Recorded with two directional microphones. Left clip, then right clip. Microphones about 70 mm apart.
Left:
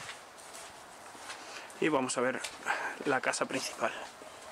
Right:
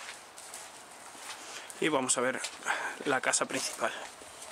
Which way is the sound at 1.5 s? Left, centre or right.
Centre.